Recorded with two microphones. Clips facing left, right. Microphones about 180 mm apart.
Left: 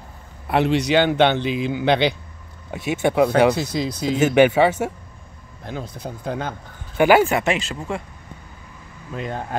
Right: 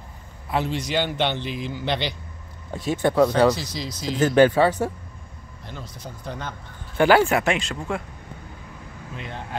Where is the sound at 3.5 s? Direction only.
55° left (ahead or behind).